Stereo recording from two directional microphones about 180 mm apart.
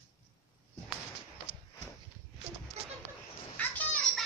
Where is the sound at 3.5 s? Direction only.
10° left (ahead or behind).